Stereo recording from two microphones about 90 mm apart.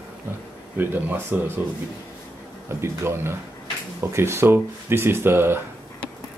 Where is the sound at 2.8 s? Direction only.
30° right (ahead or behind).